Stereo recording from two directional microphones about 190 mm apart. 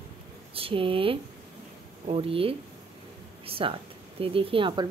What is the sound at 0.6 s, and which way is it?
A woman's voice, 30° right (ahead or behind).